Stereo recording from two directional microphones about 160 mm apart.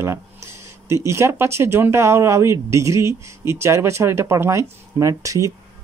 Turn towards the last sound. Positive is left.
turn(degrees=-20)  # may be behind; listen again after turning